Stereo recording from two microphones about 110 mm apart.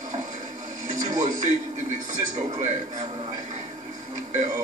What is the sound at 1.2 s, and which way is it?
A man's voice, 90° right.